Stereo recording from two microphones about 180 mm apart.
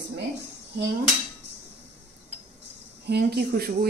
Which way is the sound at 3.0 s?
65° right (ahead or behind).